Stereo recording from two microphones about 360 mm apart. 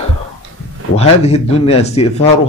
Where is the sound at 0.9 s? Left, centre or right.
Centre.